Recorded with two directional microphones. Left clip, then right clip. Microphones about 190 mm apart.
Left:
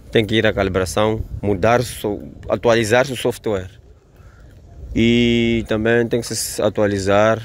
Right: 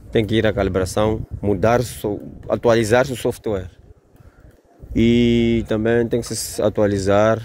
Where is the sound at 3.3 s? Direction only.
10° right (ahead or behind).